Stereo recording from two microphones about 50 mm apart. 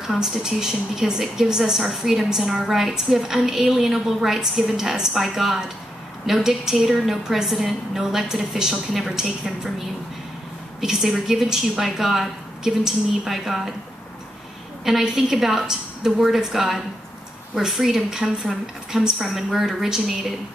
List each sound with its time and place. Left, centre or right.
0.0 s a woman's voice: centre
10.8 s a woman's voice: centre
14.9 s a woman's voice: centre